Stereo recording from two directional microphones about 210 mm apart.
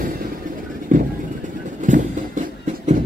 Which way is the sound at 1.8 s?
35° right (ahead or behind).